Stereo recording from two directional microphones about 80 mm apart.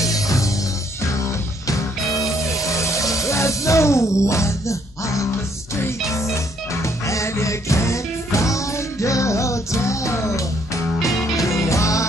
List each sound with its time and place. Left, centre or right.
0.0 s music: left
2.5 s music: left